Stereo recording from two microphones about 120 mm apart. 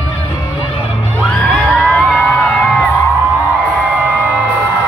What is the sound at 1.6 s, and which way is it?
Music, 10° left (ahead or behind).